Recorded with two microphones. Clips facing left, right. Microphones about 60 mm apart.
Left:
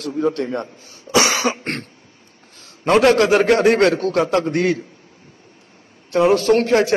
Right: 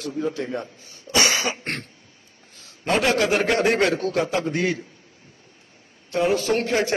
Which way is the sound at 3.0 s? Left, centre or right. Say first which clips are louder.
Left 6 dB; left.